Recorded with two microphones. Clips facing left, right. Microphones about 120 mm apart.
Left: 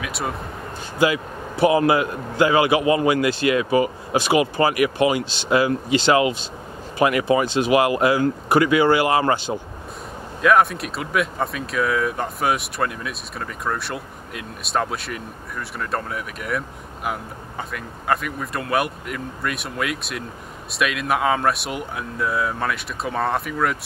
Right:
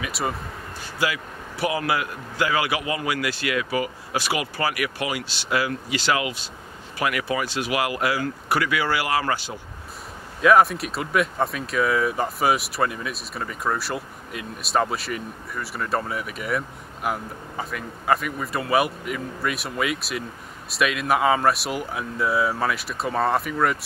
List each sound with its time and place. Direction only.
0.0 s speech: centre (ahead or behind)
0.9 s a man's voice: 25° left (ahead or behind)
10.4 s speech: centre (ahead or behind)